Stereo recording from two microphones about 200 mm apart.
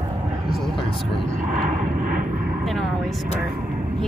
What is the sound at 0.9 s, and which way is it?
Vehicle, centre (ahead or behind).